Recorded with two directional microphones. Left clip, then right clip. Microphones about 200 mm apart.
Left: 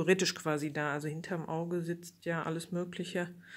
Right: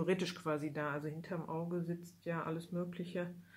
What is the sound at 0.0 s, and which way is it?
Speech, 40° left (ahead or behind).